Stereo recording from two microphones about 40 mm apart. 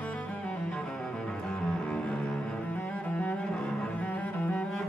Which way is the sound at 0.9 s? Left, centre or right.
Centre.